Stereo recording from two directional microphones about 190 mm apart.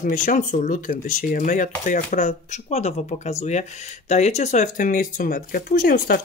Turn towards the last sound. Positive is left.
turn(degrees=50)  # may be behind; listen again after turning